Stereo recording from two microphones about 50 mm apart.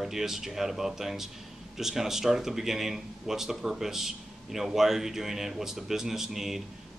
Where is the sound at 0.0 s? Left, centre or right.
Centre.